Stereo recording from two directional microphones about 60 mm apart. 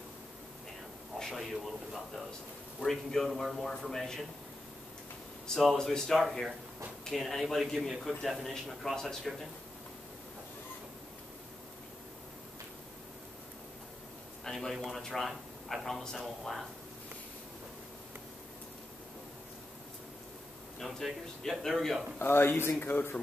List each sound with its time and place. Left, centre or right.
1.2 s a man's voice: centre
5.5 s a man's voice: centre
14.4 s a man's voice: centre
20.8 s speech: centre
22.2 s speech: left